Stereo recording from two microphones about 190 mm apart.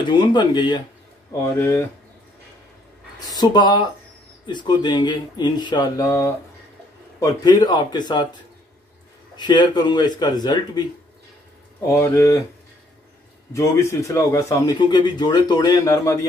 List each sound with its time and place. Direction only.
0.1 s a man's voice: 25° left (ahead or behind)
3.2 s a man's voice: 20° left (ahead or behind)
9.4 s a man's voice: 25° left (ahead or behind)
11.9 s speech: 15° left (ahead or behind)
13.5 s a man's voice: 15° left (ahead or behind)